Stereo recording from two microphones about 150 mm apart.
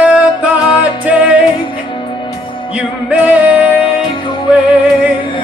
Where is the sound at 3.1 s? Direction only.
10° right (ahead or behind).